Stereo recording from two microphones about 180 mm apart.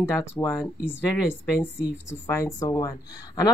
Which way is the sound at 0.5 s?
5° right (ahead or behind).